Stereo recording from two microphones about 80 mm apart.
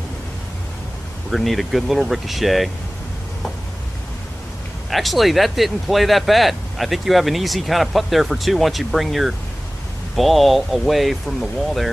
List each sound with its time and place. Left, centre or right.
1.3 s speech: centre
4.8 s speech: centre